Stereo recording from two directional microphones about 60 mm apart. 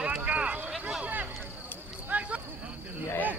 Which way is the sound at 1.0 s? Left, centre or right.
Right.